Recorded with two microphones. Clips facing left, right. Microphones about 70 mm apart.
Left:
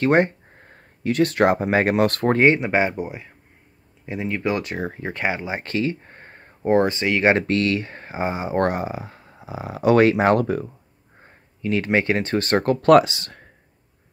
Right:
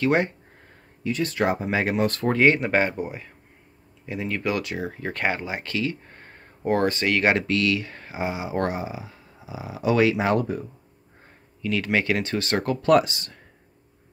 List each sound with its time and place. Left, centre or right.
0.0 s speech: left
1.0 s speech: left
2.4 s speech: left
5.0 s speech: centre
5.6 s speech: left
7.3 s speech: left
11.6 s speech: left
12.8 s speech: left